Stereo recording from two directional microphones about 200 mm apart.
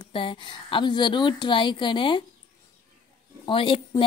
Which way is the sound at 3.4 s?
25° left (ahead or behind).